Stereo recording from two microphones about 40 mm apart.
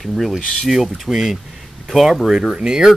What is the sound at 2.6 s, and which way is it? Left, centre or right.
Speech, centre.